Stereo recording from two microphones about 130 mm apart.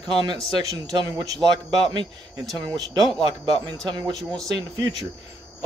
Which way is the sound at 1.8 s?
35° right (ahead or behind).